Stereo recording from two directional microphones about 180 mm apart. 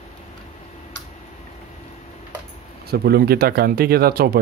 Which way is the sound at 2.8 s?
60° right (ahead or behind).